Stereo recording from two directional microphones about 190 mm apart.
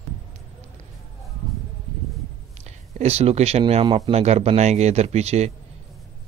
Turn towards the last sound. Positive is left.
turn(degrees=-35)  # may be behind; listen again after turning